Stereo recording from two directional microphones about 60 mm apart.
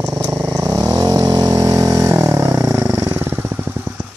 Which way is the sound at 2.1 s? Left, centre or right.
Right.